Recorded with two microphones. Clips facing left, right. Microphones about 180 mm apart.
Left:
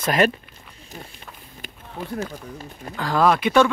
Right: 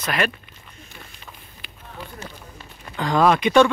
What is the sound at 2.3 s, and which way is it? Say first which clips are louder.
Speech: left 7 dB; 40° left (ahead or behind).